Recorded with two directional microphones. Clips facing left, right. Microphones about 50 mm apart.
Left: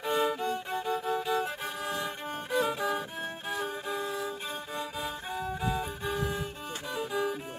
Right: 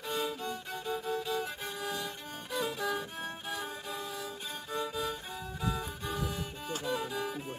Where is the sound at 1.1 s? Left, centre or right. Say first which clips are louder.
Left 4 dB; left.